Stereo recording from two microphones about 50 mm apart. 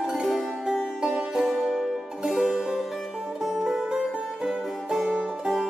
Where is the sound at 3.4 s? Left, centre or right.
Centre.